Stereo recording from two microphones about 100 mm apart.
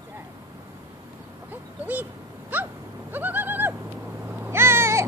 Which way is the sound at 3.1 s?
20° right (ahead or behind).